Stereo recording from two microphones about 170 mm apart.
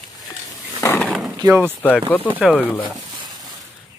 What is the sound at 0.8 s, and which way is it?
Dog, 15° left (ahead or behind).